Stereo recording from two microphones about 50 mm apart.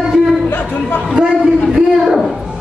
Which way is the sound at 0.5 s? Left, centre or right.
Left.